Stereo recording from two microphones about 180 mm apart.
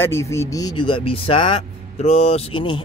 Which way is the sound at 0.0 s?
15° left (ahead or behind).